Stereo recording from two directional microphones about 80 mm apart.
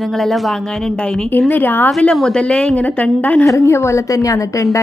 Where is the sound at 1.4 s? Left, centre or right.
Left.